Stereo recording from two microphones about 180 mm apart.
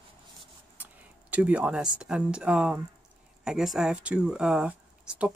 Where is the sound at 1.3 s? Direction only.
10° right (ahead or behind).